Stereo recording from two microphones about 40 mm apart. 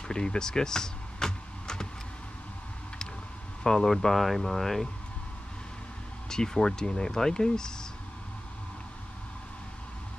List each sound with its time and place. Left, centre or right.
0.1 s power windows: left
3.6 s speech: centre
6.2 s speech: centre